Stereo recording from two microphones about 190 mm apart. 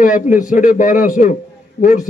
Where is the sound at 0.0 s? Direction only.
45° left (ahead or behind).